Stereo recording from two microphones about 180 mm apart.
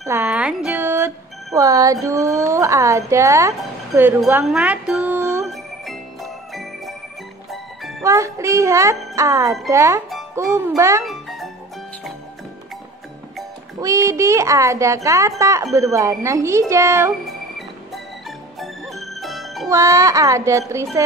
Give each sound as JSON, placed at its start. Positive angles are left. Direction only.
{"t": 0.0, "sound": "speech", "side_deg": -10}
{"t": 4.5, "sound": "music", "side_deg": -5}
{"t": 5.5, "sound": "jingle bell", "side_deg": 0}
{"t": 8.0, "sound": "a woman's voice", "side_deg": -15}
{"t": 11.1, "sound": "music", "side_deg": 0}
{"t": 13.7, "sound": "a woman's voice", "side_deg": -15}
{"t": 17.3, "sound": "music", "side_deg": 0}
{"t": 19.7, "sound": "a woman's voice", "side_deg": -15}